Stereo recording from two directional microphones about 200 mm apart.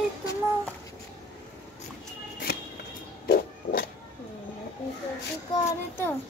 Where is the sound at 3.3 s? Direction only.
50° left (ahead or behind).